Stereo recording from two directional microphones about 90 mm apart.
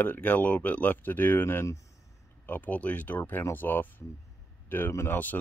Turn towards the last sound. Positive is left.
turn(degrees=20)  # may be behind; listen again after turning